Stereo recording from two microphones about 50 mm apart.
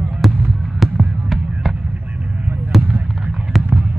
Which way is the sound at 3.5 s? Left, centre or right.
Centre.